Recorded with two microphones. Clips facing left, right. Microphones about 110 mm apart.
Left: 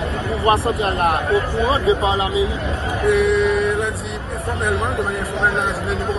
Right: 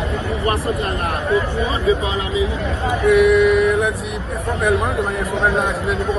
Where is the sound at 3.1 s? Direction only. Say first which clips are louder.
Right 3 dB; 70° right (ahead or behind).